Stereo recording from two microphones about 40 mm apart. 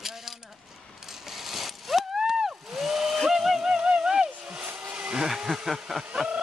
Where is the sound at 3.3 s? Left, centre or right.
Centre.